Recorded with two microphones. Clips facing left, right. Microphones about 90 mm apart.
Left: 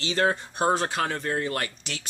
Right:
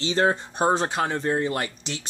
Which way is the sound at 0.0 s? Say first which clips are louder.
Right 2 dB; 25° right (ahead or behind).